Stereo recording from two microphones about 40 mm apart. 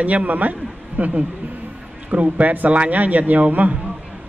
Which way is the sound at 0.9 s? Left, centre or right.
Right.